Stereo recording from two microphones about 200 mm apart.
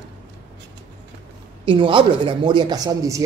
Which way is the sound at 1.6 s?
25° right (ahead or behind).